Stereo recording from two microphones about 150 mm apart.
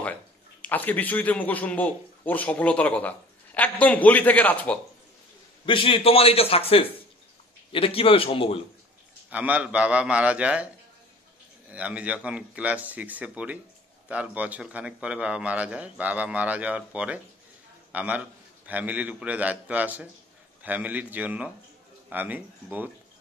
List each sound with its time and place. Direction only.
0.6 s a man's voice: 10° left (ahead or behind)
5.7 s a man's voice: 35° left (ahead or behind)
9.3 s a man's voice: 10° right (ahead or behind)
11.7 s a man's voice: 10° right (ahead or behind)